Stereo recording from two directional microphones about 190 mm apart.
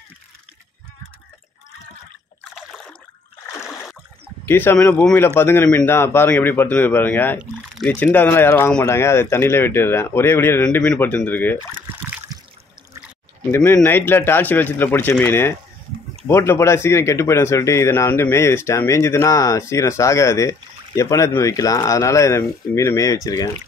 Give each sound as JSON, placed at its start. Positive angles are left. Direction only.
{"t": 2.5, "sound": "a sound", "side_deg": 5}
{"t": 4.5, "sound": "speech", "side_deg": 10}
{"t": 11.9, "sound": "water", "side_deg": -10}
{"t": 13.5, "sound": "speech", "side_deg": 10}